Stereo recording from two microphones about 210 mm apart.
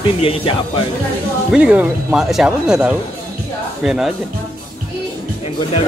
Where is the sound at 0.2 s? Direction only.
25° left (ahead or behind).